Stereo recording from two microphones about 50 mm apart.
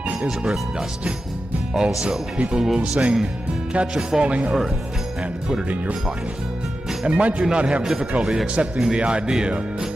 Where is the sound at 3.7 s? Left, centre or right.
Centre.